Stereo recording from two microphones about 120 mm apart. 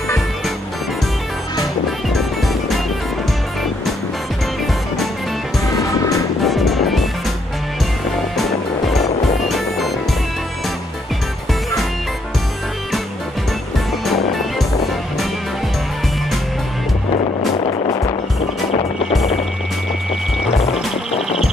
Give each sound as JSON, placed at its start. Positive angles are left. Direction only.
{"t": 1.9, "sound": "music", "side_deg": 0}
{"t": 6.4, "sound": "music", "side_deg": 0}
{"t": 17.6, "sound": "music", "side_deg": 50}
{"t": 21.1, "sound": "music", "side_deg": 55}